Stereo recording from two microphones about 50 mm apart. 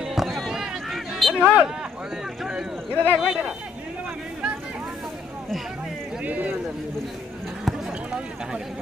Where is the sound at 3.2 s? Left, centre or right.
Centre.